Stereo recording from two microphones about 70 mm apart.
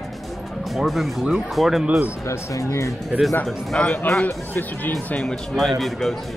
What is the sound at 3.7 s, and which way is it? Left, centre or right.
Speech, centre.